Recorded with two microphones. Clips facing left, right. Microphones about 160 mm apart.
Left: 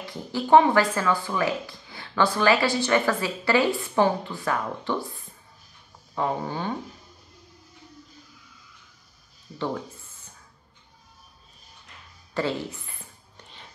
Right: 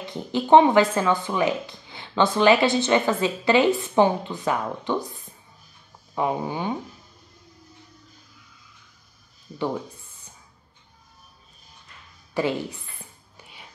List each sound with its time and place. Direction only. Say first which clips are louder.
0.0 s speech: right 3 dB; 20° right (ahead or behind)
6.1 s speech: right 2 dB; 15° right (ahead or behind)
12.4 s speech: right 3 dB; 15° right (ahead or behind)
13.4 s music: right 1 dB; 10° right (ahead or behind)